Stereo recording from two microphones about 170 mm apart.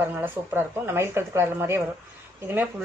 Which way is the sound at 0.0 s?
10° right (ahead or behind).